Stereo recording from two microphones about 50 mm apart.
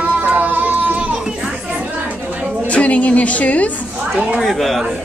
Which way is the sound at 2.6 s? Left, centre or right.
Left.